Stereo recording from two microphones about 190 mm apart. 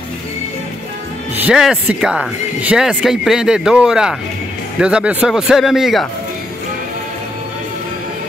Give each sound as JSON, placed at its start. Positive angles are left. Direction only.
{"t": 1.3, "sound": "speech", "side_deg": -5}